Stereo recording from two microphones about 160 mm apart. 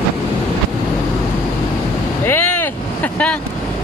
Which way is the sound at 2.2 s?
15° left (ahead or behind).